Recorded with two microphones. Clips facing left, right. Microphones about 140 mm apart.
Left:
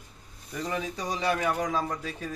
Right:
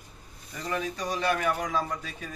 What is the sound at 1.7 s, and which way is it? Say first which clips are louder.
Speech: even; 35° left (ahead or behind).